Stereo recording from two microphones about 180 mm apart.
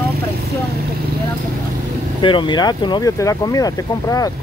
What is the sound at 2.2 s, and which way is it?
Speech, 25° left (ahead or behind).